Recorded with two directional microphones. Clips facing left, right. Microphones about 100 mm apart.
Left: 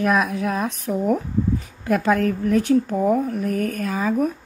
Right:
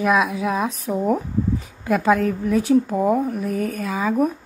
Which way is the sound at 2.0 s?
10° right (ahead or behind).